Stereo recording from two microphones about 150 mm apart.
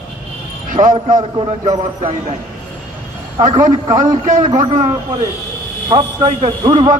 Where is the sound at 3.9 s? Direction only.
60° right (ahead or behind).